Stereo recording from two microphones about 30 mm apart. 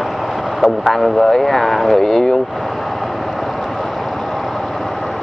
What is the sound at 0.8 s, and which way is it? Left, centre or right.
Speech, centre.